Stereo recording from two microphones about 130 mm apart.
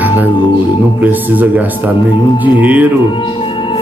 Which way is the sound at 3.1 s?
40° left (ahead or behind).